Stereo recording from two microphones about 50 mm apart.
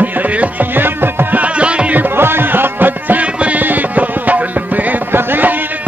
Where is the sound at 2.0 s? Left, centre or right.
Right.